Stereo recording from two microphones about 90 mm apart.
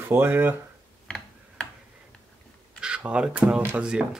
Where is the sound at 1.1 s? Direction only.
10° left (ahead or behind).